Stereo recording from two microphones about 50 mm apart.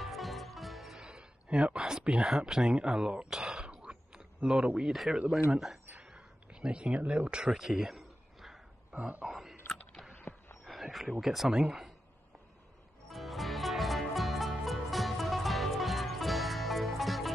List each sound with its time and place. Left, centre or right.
0.0 s music: centre
0.9 s speech: centre
3.3 s throat clearing: centre
4.4 s speech: centre
4.9 s speech: centre
5.9 s a sound: right
7.1 s speech: right
7.5 s a sound: centre
8.9 s speech: right
9.3 s speech: centre
10.1 s a sound: left
10.6 s speech: centre
13.1 s music: centre